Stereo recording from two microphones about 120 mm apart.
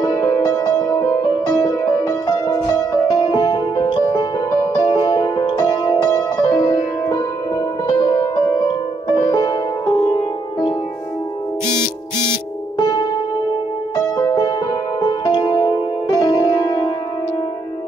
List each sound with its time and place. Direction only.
0.0 s music: 30° left (ahead or behind)
12.3 s music: 35° left (ahead or behind)